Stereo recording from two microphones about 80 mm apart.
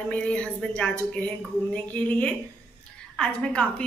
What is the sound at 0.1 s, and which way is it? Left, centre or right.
A woman's voice, centre.